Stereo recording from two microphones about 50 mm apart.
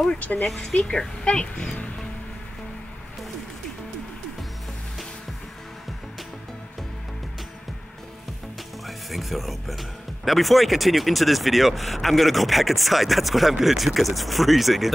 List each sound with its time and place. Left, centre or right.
0.6 s speech: centre
8.8 s speech: centre